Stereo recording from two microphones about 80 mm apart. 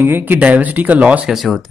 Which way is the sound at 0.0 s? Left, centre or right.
Right.